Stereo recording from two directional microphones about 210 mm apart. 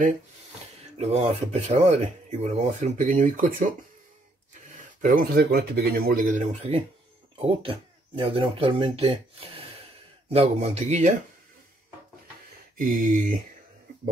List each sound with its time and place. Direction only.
0.9 s speech: 30° right (ahead or behind)
5.0 s speech: 45° right (ahead or behind)
12.7 s speech: 40° right (ahead or behind)